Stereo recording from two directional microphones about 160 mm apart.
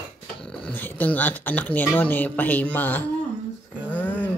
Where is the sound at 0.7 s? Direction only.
10° left (ahead or behind).